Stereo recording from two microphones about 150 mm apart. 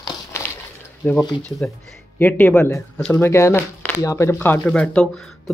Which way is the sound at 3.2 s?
20° left (ahead or behind).